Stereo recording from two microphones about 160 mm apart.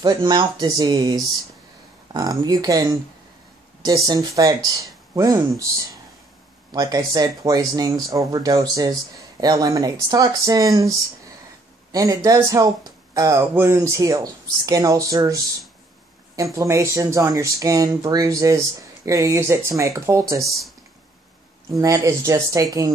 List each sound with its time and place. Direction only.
0.0 s speech: 25° right (ahead or behind)
6.7 s speech: 25° right (ahead or behind)
16.5 s speech: 20° right (ahead or behind)
21.6 s speech: 20° right (ahead or behind)